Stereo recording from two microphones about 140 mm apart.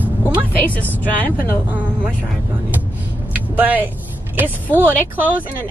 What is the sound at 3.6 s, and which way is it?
Speech, 10° right (ahead or behind).